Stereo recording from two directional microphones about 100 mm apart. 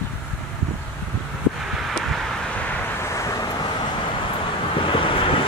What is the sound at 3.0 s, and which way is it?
Vehicle, 30° left (ahead or behind).